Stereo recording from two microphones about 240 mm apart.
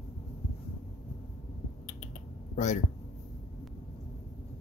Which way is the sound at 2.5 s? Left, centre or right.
Left.